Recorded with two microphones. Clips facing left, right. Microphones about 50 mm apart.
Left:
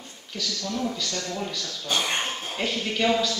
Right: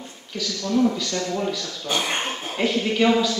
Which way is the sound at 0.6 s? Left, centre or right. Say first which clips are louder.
Right 10 dB; right.